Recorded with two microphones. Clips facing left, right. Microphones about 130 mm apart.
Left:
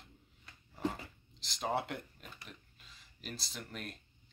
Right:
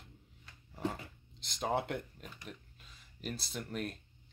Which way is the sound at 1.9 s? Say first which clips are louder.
Right 4 dB; 45° right (ahead or behind).